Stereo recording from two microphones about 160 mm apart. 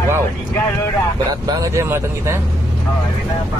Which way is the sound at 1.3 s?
20° right (ahead or behind).